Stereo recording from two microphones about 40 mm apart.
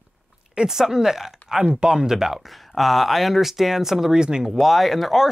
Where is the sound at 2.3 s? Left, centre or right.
Centre.